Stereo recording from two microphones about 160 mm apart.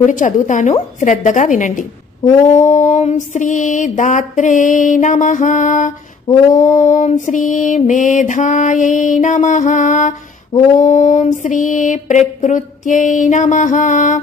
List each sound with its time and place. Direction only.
0.0 s mantra: 50° left (ahead or behind)